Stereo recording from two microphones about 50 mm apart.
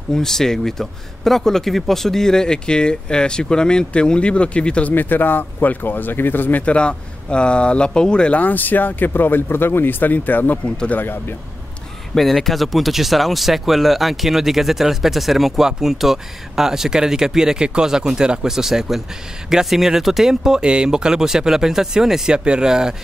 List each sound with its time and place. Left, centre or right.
0.1 s speech: centre
4.9 s speech: left
6.6 s speech: left
8.4 s speech: left
12.1 s speech: centre